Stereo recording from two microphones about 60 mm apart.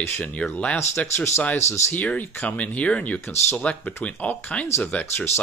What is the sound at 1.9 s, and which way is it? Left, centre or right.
Speech, left.